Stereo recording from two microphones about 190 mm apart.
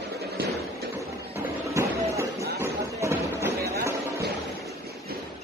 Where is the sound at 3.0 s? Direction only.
15° right (ahead or behind).